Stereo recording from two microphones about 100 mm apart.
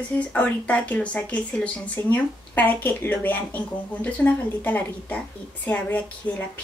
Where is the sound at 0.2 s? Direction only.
15° left (ahead or behind).